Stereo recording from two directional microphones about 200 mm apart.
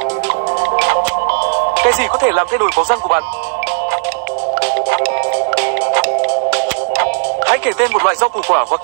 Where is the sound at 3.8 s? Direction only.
55° right (ahead or behind).